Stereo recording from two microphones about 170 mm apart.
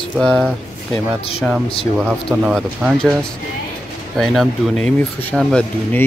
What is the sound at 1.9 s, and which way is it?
Speech, 5° right (ahead or behind).